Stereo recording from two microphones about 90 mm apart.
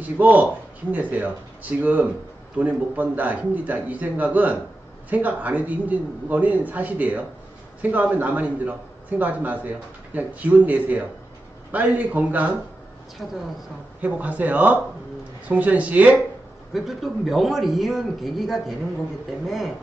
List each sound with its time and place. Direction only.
0.0 s a man's voice: 20° right (ahead or behind)
13.2 s a man's voice: centre (ahead or behind)
14.0 s a man's voice: 15° right (ahead or behind)
16.7 s a man's voice: centre (ahead or behind)